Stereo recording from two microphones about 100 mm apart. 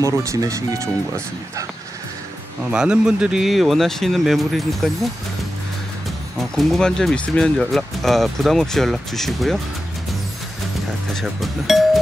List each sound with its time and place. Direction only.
0.0 s speech: 30° right (ahead or behind)
2.7 s speech: 10° right (ahead or behind)
6.5 s speech: centre (ahead or behind)
11.1 s speech: centre (ahead or behind)